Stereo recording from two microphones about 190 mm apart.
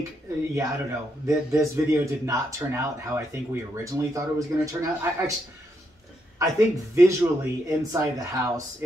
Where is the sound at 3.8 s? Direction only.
15° right (ahead or behind).